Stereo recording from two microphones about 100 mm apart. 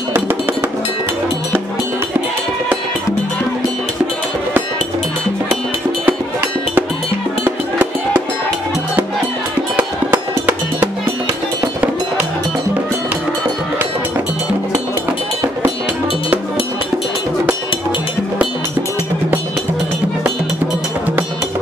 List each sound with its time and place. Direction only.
0.1 s music: 25° right (ahead or behind)
6.0 s music: 20° right (ahead or behind)
9.8 s music: 20° right (ahead or behind)